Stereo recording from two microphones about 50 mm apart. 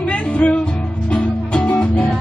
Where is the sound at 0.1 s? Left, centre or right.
Left.